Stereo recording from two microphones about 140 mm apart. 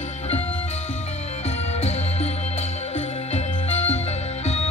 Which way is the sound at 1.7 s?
50° left (ahead or behind).